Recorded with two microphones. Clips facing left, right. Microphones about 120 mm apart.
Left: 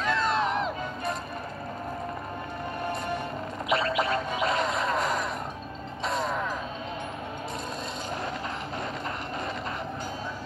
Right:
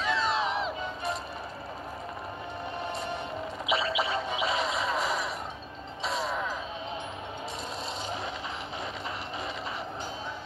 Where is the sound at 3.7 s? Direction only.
Centre (ahead or behind).